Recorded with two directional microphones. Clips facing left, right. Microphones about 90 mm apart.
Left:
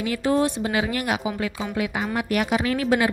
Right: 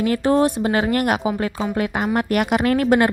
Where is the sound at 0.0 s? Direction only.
45° right (ahead or behind).